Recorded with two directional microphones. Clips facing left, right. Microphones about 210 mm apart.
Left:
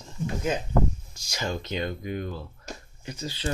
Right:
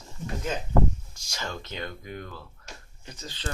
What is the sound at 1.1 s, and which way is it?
Speech, 15° left (ahead or behind).